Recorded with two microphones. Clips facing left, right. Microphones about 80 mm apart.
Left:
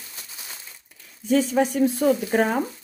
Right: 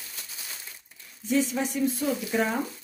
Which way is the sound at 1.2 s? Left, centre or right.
Left.